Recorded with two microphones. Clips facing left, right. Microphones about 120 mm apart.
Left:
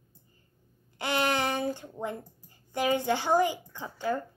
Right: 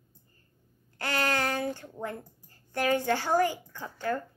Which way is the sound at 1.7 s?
15° left (ahead or behind).